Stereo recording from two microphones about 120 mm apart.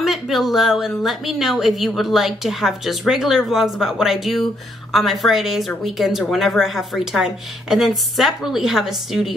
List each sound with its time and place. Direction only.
0.0 s speech: centre (ahead or behind)